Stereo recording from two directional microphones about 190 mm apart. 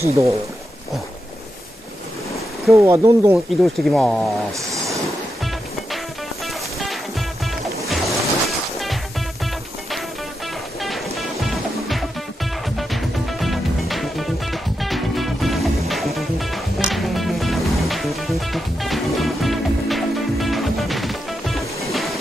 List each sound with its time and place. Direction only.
0.0 s speech: 15° right (ahead or behind)
2.7 s speech: 15° right (ahead or behind)
3.6 s speech: centre (ahead or behind)
6.4 s music: centre (ahead or behind)
11.1 s music: centre (ahead or behind)
21.9 s train: centre (ahead or behind)